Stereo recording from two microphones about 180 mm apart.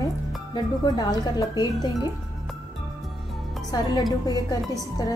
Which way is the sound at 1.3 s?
20° left (ahead or behind).